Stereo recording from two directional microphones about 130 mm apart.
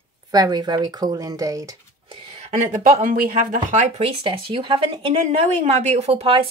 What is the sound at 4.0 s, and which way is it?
Speech, 40° right (ahead or behind).